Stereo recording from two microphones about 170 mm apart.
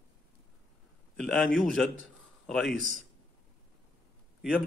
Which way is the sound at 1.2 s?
Centre (ahead or behind).